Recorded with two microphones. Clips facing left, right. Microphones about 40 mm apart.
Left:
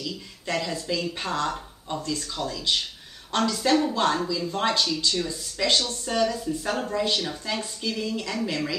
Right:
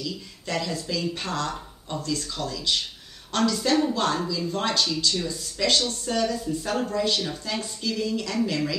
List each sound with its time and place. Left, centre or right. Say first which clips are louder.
0.0 s a woman's voice: even; centre